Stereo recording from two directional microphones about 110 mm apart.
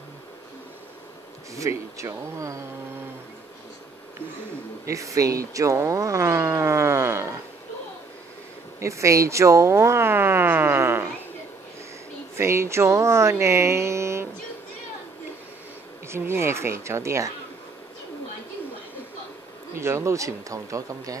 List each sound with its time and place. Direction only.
1.5 s speech: 30° right (ahead or behind)
4.8 s speech: 30° right (ahead or behind)
8.7 s speech: 25° right (ahead or behind)
12.4 s speech: 25° right (ahead or behind)
16.1 s speech: 20° right (ahead or behind)
19.7 s speech: 25° right (ahead or behind)